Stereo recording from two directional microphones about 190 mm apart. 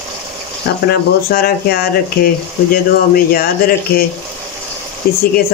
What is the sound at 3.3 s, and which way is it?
Speech, 50° left (ahead or behind).